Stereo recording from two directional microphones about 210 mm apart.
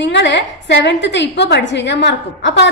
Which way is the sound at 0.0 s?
60° left (ahead or behind).